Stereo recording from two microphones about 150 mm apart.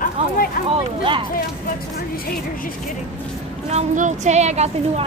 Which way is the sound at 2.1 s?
75° left (ahead or behind).